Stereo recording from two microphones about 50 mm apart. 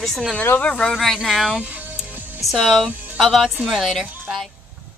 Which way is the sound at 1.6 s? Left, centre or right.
Right.